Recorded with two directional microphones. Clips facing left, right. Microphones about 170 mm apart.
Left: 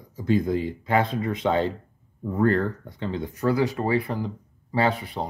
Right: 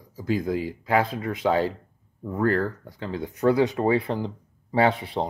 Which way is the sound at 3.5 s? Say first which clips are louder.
Right 2 dB; 20° right (ahead or behind).